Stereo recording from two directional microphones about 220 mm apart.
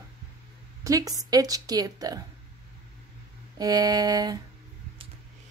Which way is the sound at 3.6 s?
15° right (ahead or behind).